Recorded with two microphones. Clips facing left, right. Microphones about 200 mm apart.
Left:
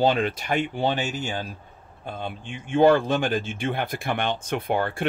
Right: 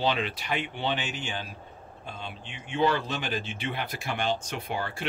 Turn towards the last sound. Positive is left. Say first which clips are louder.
# left 8 dB
turn(degrees=55)  # may be behind; listen again after turning